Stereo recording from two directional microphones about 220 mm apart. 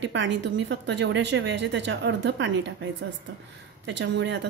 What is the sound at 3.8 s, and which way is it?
Speech, 55° right (ahead or behind).